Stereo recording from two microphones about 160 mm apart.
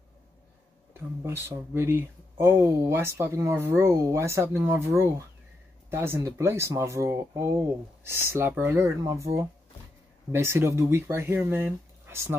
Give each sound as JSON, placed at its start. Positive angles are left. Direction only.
{"t": 0.9, "sound": "speech", "side_deg": -15}